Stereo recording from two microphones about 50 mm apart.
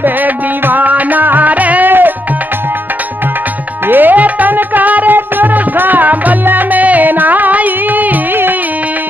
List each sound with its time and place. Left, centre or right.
0.0 s music: right
3.8 s music: right